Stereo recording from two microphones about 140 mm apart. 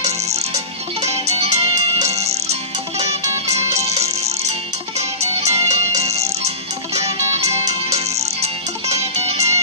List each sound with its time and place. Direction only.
1.4 s music: 45° right (ahead or behind)